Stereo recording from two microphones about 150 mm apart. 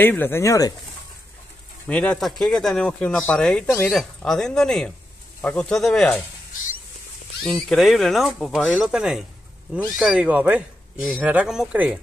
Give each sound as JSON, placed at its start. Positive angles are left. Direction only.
{"t": 0.0, "sound": "speech", "side_deg": 15}
{"t": 1.9, "sound": "speech", "side_deg": 5}
{"t": 3.9, "sound": "speech", "side_deg": 0}
{"t": 7.4, "sound": "speech", "side_deg": 5}